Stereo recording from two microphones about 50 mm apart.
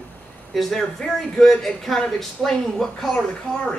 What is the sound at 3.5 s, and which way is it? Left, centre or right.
Speech, centre.